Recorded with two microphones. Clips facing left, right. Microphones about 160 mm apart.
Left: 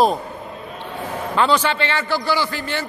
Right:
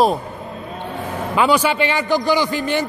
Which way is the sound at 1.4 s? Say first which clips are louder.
Right 2 dB; 10° right (ahead or behind).